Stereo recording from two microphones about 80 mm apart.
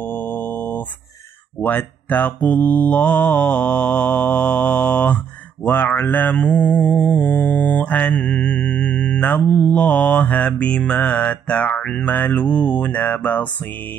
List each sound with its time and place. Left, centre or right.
0.0 s mantra: left